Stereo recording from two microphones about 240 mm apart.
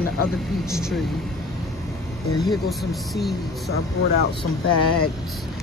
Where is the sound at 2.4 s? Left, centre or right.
Centre.